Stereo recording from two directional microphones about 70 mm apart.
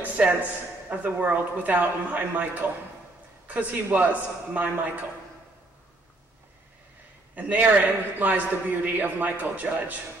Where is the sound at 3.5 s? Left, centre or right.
Right.